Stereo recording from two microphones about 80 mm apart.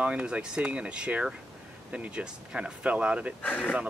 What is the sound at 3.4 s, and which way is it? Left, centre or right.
Speech, centre.